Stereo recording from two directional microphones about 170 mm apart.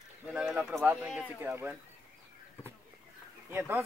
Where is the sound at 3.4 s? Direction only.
10° right (ahead or behind).